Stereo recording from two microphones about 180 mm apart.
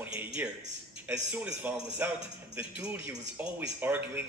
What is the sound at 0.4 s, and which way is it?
Speech, 10° right (ahead or behind).